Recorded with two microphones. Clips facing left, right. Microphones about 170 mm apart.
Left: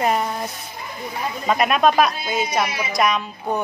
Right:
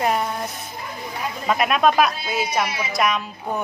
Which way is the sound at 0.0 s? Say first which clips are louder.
Left 1 dB; centre (ahead or behind).